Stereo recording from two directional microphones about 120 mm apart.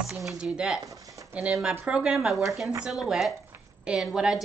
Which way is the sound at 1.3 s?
10° right (ahead or behind).